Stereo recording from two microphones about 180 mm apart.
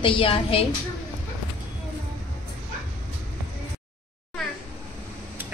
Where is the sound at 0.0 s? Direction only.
30° left (ahead or behind).